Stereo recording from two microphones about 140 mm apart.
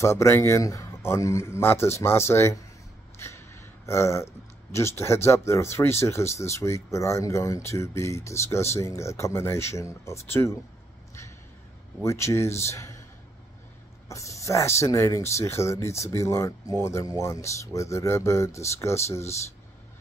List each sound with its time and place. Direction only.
0.0 s speech: 20° left (ahead or behind)
3.2 s a sound: 20° left (ahead or behind)
4.7 s speech: 20° left (ahead or behind)
12.0 s speech: 20° left (ahead or behind)
14.0 s speech: 20° left (ahead or behind)